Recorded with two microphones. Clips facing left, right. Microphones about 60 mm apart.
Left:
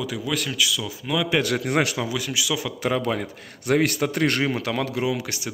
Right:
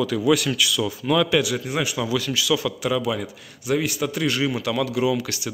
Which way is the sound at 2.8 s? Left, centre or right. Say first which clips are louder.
Even; left.